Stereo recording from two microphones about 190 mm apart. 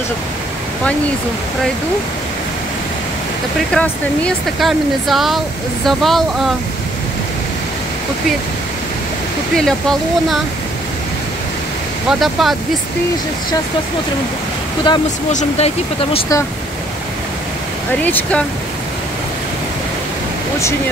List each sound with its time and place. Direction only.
3.7 s speech: 5° left (ahead or behind)
9.6 s speech: 5° left (ahead or behind)
12.1 s speech: centre (ahead or behind)
14.9 s speech: 25° left (ahead or behind)